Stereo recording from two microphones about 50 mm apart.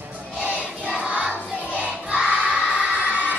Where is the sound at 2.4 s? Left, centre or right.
Right.